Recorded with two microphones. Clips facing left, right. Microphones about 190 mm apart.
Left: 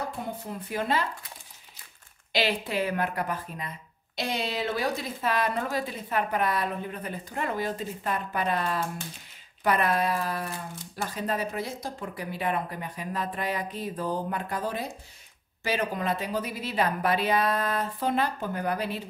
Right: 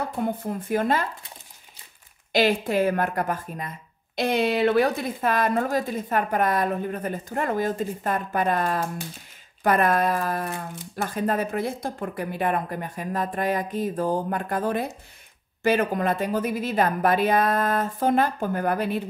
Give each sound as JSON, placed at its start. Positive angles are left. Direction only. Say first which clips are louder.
{"t": 0.2, "sound": "speech", "louder": "right 8 dB", "side_deg": -50}
{"t": 2.3, "sound": "speech", "louder": "right 6 dB", "side_deg": -45}